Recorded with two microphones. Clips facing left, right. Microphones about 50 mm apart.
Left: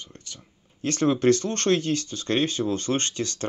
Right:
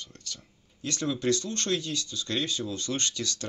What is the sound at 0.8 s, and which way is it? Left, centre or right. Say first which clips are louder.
Speech: left 8 dB; left.